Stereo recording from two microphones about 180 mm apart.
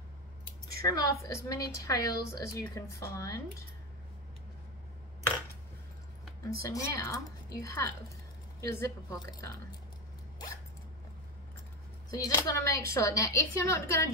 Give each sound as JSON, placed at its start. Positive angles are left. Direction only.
{"t": 0.8, "sound": "a woman's voice", "side_deg": 20}
{"t": 6.6, "sound": "a woman's voice", "side_deg": 15}
{"t": 12.1, "sound": "a woman's voice", "side_deg": 20}